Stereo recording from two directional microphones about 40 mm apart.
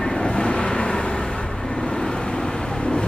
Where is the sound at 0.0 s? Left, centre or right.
Centre.